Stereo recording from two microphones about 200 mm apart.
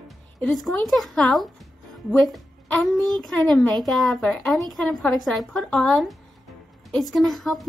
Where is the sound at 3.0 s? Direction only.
20° right (ahead or behind).